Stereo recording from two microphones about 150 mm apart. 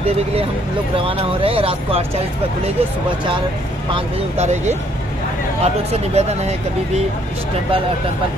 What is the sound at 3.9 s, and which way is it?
Speech, 50° right (ahead or behind).